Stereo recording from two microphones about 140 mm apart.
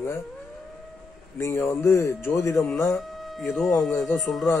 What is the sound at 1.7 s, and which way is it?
Speech, 20° left (ahead or behind).